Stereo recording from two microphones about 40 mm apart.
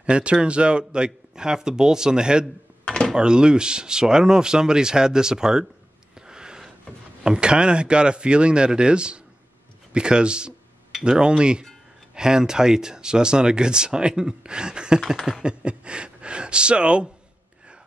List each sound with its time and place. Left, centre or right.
0.0 s speech: right
2.8 s drawer open or close: left
3.2 s speech: right
6.1 s gasp: centre
7.2 s speech: right